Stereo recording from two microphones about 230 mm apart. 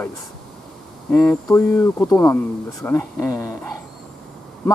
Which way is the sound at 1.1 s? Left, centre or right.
Centre.